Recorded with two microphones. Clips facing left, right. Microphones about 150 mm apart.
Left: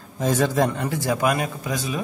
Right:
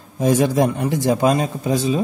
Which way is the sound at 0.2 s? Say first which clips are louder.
Right 4 dB; 15° right (ahead or behind).